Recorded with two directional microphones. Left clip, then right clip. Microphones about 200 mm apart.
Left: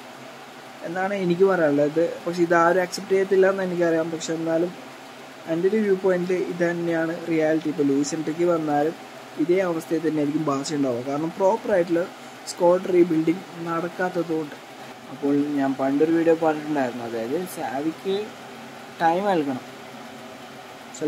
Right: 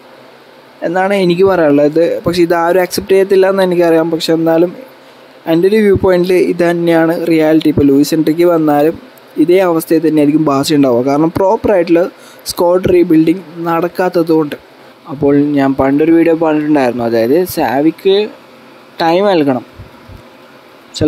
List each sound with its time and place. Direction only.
0.9 s speech: 45° right (ahead or behind)
15.2 s speech: 50° right (ahead or behind)